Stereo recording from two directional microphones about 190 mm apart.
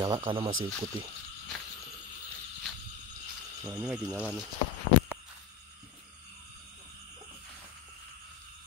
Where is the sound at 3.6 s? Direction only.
5° right (ahead or behind).